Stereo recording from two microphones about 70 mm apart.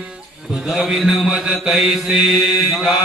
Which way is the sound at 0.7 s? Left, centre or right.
Centre.